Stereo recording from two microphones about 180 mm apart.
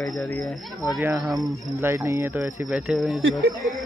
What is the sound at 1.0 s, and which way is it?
A man's voice, 10° right (ahead or behind).